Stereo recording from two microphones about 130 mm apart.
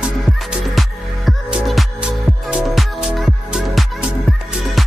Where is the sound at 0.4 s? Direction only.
Centre (ahead or behind).